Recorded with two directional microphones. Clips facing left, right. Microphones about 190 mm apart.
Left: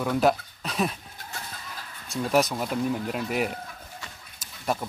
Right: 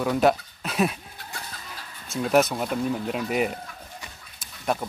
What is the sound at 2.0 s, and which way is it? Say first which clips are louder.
Speech: right 3 dB; 5° right (ahead or behind).